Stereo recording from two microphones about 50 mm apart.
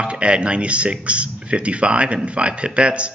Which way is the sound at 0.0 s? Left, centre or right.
Right.